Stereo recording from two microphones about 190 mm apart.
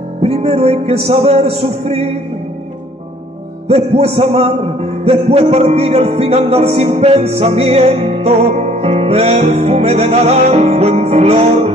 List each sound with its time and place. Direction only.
0.2 s music: 30° right (ahead or behind)
3.6 s music: 30° right (ahead or behind)